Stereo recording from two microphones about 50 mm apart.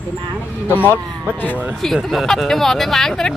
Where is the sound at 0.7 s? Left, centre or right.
Left.